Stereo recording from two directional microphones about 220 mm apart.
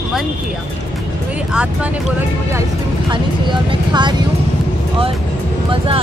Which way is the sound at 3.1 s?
20° right (ahead or behind).